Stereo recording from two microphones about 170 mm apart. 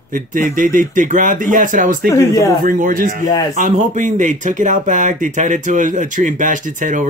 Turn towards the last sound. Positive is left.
turn(degrees=-50)  # may be behind; listen again after turning